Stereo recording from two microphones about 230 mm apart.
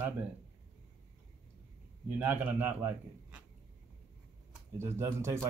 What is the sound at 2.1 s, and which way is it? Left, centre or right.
Speech, centre.